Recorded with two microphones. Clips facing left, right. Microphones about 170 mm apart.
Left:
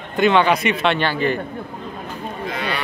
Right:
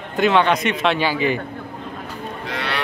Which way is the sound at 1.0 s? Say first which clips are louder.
Even; 10° right (ahead or behind).